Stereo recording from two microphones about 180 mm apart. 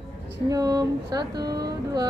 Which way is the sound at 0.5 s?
20° right (ahead or behind).